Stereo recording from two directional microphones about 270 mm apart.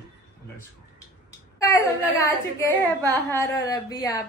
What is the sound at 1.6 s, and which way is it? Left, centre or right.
A woman's voice, centre.